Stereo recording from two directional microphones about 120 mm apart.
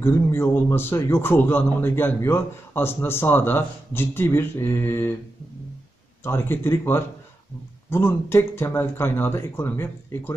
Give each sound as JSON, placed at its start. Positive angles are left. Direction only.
{"t": 0.0, "sound": "a man's voice", "side_deg": 20}
{"t": 6.2, "sound": "a man's voice", "side_deg": 20}